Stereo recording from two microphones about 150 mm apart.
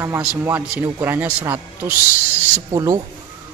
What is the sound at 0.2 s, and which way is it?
Speech, 10° right (ahead or behind).